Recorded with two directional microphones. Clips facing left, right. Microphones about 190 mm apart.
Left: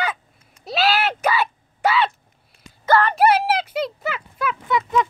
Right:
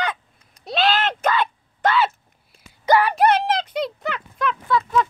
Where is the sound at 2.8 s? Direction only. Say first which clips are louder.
Even; 15° right (ahead or behind).